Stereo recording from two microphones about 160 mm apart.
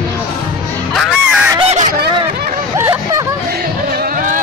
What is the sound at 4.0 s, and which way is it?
Vehicle, 55° right (ahead or behind).